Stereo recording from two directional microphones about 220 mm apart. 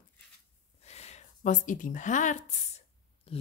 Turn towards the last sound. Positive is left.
turn(degrees=25)  # may be behind; listen again after turning